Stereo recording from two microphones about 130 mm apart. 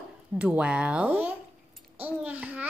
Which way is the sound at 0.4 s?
10° right (ahead or behind).